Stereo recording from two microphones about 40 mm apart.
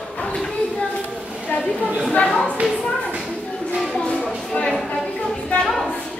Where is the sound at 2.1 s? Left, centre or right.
Left.